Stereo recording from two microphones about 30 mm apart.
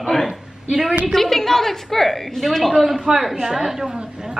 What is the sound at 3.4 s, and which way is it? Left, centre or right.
Speech, centre.